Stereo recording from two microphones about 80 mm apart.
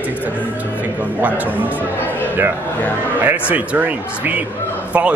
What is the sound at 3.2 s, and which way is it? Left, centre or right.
Speech, right.